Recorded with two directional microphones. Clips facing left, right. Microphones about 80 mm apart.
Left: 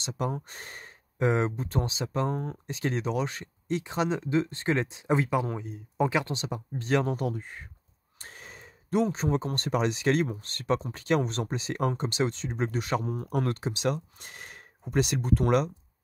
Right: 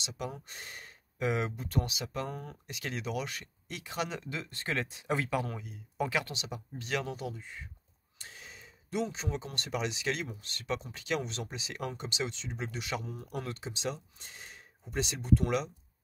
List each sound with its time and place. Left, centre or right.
0.0 s speech: left